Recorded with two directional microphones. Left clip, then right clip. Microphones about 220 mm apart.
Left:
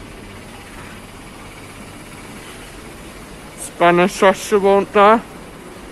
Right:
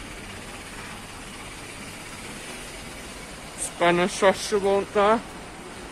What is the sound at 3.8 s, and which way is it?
Speech, 25° left (ahead or behind).